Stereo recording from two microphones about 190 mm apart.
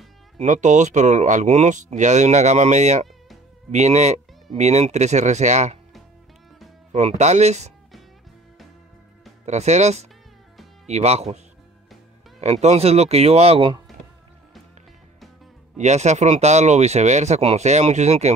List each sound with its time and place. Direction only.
0.4 s speech: 40° right (ahead or behind)
6.9 s speech: 35° right (ahead or behind)
9.5 s speech: 35° right (ahead or behind)
15.8 s speech: 35° right (ahead or behind)